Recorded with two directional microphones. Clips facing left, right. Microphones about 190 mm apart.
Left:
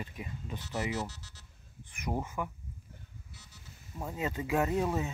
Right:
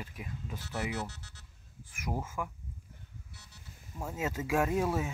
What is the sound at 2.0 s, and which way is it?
Speech, 5° right (ahead or behind).